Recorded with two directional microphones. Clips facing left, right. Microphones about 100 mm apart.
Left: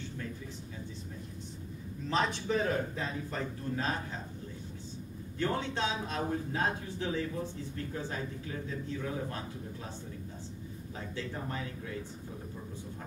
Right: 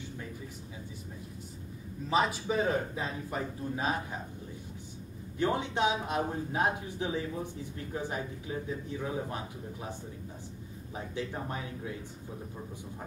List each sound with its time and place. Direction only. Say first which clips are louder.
2.0 s a man's voice: right 2 dB; 5° right (ahead or behind)
5.4 s a man's voice: right 4 dB; 15° right (ahead or behind)
11.0 s a man's voice: right 3 dB; 20° right (ahead or behind)